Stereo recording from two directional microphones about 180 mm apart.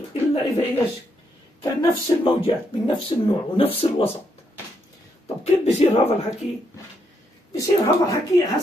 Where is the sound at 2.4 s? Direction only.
30° left (ahead or behind).